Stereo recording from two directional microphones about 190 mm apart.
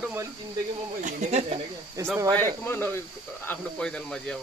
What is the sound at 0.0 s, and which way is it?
Snake, 10° right (ahead or behind).